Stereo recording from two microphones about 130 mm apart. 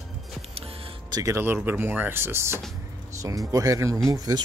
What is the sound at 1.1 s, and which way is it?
Speech, 25° right (ahead or behind).